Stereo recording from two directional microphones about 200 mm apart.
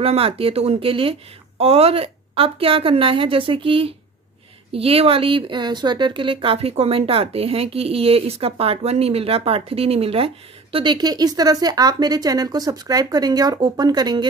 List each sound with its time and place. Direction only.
0.0 s speech: 30° right (ahead or behind)